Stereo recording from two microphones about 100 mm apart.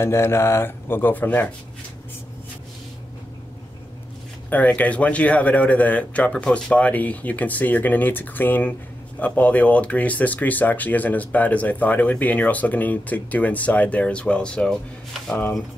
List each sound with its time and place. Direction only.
0.0 s speech: 25° left (ahead or behind)
4.5 s speech: 15° left (ahead or behind)